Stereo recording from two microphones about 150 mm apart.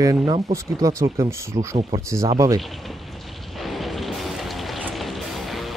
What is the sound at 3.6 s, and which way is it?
Music, centre (ahead or behind).